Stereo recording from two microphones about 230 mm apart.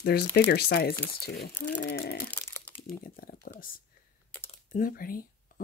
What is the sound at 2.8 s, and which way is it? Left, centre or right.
Speech, left.